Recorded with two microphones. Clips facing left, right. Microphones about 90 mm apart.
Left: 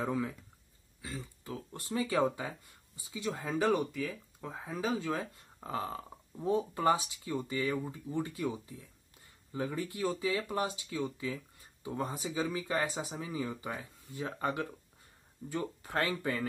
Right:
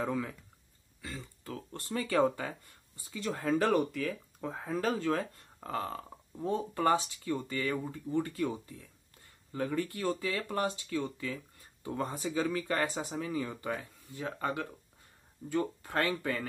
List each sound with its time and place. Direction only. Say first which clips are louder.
0.0 s speech: even; 20° left (ahead or behind)
5.7 s speech: right 1 dB; 20° left (ahead or behind)
9.5 s speech: right 3 dB; 15° left (ahead or behind)
13.7 s speech: even; 25° left (ahead or behind)